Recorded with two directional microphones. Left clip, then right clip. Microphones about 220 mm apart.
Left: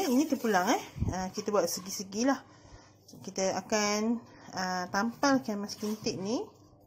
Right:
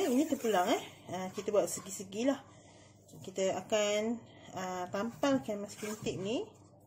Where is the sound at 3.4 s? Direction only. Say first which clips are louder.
Left 2 dB; 25° left (ahead or behind).